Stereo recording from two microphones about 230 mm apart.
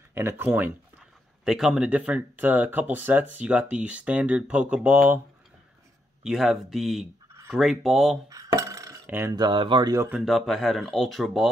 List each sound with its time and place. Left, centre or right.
0.1 s speech: centre
6.2 s speech: centre
8.3 s dishes: centre